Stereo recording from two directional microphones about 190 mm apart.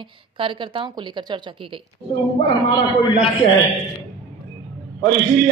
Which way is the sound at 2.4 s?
25° left (ahead or behind).